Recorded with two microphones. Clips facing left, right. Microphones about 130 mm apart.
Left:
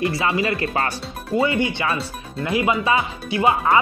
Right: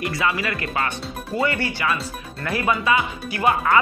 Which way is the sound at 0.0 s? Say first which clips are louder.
Left 3 dB; 30° left (ahead or behind).